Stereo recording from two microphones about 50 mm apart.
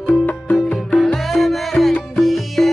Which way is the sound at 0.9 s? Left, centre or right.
Centre.